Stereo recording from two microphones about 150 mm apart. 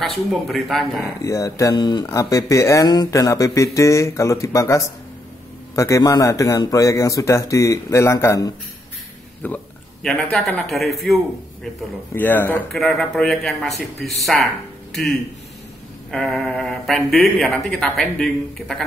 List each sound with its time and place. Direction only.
0.3 s speech: centre (ahead or behind)
1.0 s speech: 20° left (ahead or behind)
9.4 s speech: 10° left (ahead or behind)
12.1 s speech: 15° left (ahead or behind)